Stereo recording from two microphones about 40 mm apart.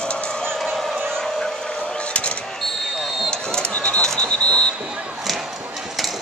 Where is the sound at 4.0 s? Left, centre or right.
Left.